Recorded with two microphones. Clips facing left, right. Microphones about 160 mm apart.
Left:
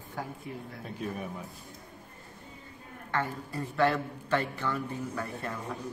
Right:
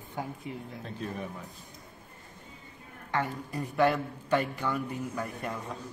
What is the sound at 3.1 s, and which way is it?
A man's voice, 15° right (ahead or behind).